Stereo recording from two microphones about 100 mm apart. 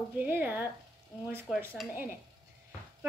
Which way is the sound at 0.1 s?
20° right (ahead or behind).